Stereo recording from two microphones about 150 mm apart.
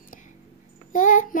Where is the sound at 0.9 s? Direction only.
60° left (ahead or behind).